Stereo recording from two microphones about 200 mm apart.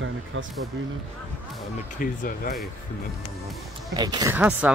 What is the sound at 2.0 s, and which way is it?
Speech, 45° left (ahead or behind).